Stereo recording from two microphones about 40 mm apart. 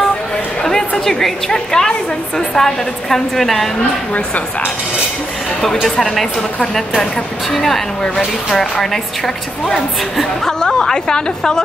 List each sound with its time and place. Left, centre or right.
0.7 s a woman's voice: centre
5.9 s a woman's voice: centre
7.5 s speech: centre
8.9 s a woman's voice: centre